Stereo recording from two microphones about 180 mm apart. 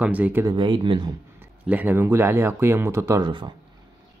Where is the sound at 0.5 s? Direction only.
25° right (ahead or behind).